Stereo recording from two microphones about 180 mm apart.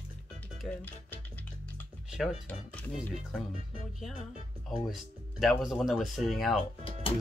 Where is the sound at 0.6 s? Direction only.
10° left (ahead or behind).